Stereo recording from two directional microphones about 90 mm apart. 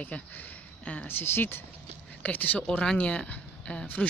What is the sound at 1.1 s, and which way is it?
Speech, 25° left (ahead or behind).